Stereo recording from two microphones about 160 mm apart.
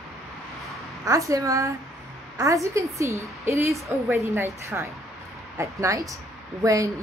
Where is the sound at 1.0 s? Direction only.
20° right (ahead or behind).